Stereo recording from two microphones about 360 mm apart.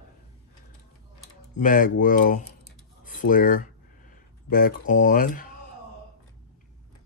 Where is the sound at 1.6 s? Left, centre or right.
Left.